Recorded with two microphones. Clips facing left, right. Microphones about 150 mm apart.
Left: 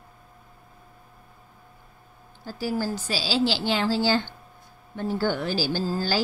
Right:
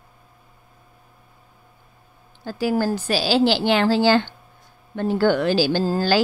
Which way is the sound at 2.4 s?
70° right (ahead or behind).